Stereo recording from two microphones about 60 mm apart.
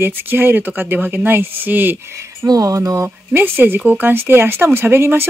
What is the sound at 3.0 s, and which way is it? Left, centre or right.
Speech, right.